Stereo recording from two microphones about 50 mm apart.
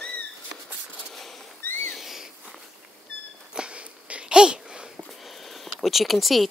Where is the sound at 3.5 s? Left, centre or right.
Centre.